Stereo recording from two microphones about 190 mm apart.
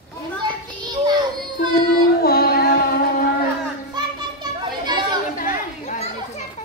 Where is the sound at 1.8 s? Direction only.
55° left (ahead or behind).